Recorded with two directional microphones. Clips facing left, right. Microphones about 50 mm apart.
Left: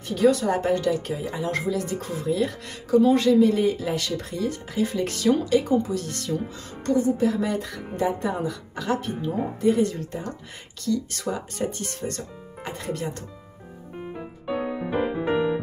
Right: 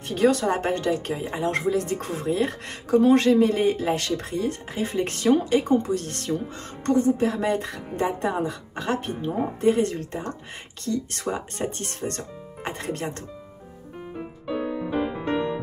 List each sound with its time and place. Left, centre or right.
0.1 s speech: right
14.1 s music: centre